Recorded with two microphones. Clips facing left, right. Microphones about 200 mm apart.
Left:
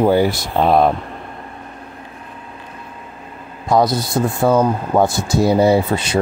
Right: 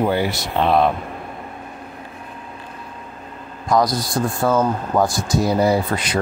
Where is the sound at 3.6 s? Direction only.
25° left (ahead or behind).